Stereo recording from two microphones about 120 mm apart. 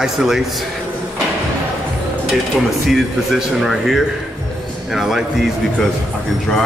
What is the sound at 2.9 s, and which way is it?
Speech, centre (ahead or behind).